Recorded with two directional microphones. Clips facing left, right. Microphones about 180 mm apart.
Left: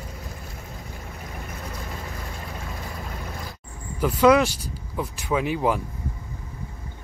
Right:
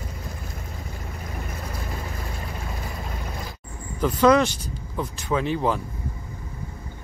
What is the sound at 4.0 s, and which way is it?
Speech, 5° left (ahead or behind).